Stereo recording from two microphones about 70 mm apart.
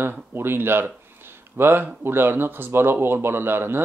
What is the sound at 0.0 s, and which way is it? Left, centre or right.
Speech, right.